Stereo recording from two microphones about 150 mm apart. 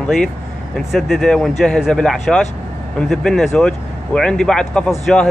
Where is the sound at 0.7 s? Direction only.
Centre (ahead or behind).